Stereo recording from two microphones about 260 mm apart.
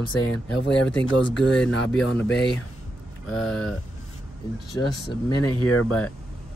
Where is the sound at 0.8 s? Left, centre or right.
Centre.